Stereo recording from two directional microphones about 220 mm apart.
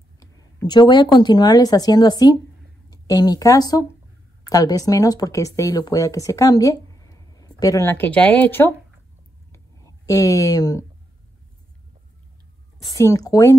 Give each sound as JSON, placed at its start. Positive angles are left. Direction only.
{"t": 0.7, "sound": "a woman's voice", "side_deg": 20}
{"t": 10.0, "sound": "speech", "side_deg": 15}
{"t": 12.9, "sound": "speech", "side_deg": 15}